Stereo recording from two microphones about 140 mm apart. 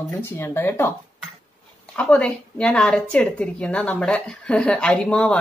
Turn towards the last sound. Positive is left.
turn(degrees=5)  # may be behind; listen again after turning